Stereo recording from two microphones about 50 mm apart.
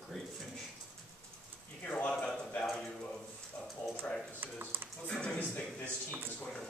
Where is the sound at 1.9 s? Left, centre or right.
Left.